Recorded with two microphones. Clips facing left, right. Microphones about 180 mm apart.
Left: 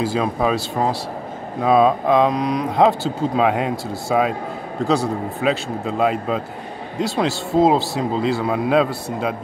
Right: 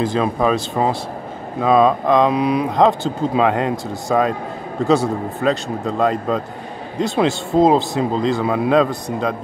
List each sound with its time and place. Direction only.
0.0 s speech: 5° left (ahead or behind)
2.7 s speech: 5° left (ahead or behind)